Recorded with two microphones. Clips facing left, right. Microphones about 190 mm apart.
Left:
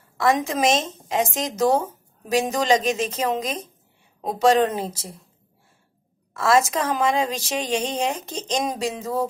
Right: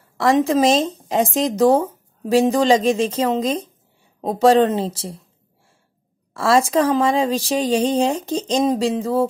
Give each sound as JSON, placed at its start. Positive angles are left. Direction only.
{"t": 0.4, "sound": "speech", "side_deg": -30}
{"t": 4.5, "sound": "music", "side_deg": -30}
{"t": 6.3, "sound": "speech", "side_deg": -30}
{"t": 8.5, "sound": "music", "side_deg": -30}